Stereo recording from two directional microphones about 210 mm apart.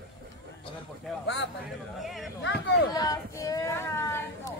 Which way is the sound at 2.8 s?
15° left (ahead or behind).